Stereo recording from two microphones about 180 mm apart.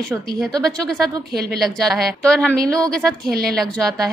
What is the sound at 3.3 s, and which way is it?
Speech, 60° right (ahead or behind).